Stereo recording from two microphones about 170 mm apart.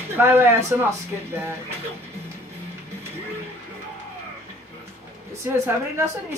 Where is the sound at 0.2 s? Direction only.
15° right (ahead or behind).